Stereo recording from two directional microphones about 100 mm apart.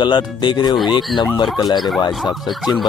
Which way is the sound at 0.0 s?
50° left (ahead or behind).